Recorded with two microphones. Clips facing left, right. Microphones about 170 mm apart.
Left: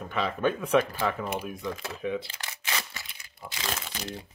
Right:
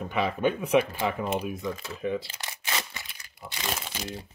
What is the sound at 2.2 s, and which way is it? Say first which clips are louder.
Single-lens reflex camera: right 1 dB; 25° right (ahead or behind).